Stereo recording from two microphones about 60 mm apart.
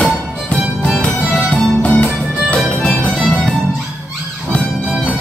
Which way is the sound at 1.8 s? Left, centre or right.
Left.